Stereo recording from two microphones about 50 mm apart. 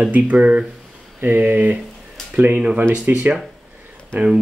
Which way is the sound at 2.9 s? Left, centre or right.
Right.